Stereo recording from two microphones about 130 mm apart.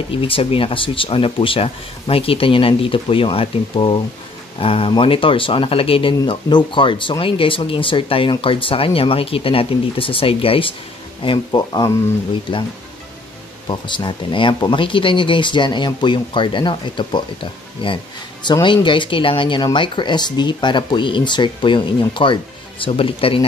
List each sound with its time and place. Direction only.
0.1 s speech: 45° left (ahead or behind)
13.7 s speech: 35° left (ahead or behind)